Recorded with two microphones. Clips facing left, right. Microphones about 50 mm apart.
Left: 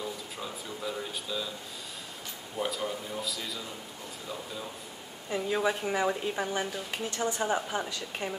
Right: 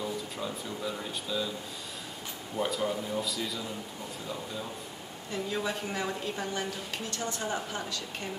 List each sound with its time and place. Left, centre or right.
0.0 s speech: centre
2.6 s speech: centre
5.3 s a woman's voice: left